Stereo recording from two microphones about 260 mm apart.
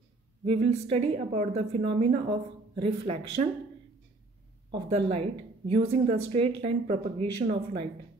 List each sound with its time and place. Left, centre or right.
0.5 s a woman's voice: right
4.8 s a woman's voice: right